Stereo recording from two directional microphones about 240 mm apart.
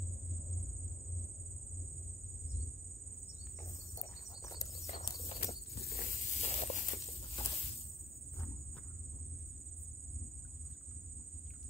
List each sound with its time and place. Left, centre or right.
4.0 s insect: centre
5.0 s horse: centre
5.4 s snake: left